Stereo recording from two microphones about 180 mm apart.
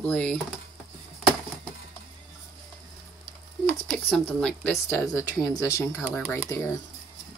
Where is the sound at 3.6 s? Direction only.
5° left (ahead or behind).